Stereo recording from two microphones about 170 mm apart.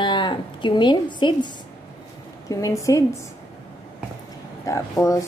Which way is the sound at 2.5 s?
20° left (ahead or behind).